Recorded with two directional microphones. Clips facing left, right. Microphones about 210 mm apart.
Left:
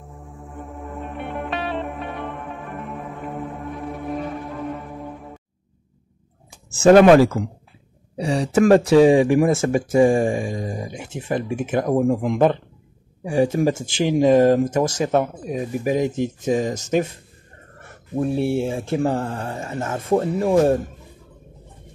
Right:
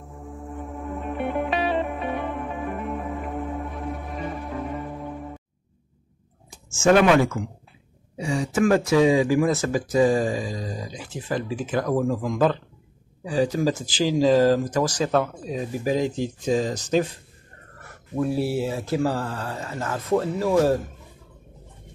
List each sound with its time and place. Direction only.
0.6 s music: centre (ahead or behind)
6.7 s speech: 35° left (ahead or behind)